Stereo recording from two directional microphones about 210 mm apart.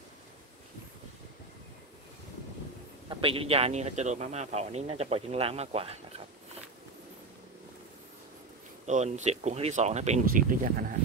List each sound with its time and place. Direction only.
3.1 s a man's voice: 25° right (ahead or behind)
8.8 s speech: 35° right (ahead or behind)